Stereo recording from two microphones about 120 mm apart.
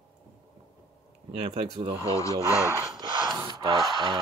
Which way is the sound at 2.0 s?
25° left (ahead or behind).